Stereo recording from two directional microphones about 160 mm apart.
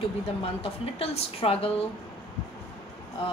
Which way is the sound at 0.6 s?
40° left (ahead or behind).